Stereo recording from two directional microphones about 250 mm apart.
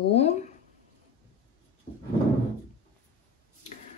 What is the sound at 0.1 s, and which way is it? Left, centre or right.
Speech, left.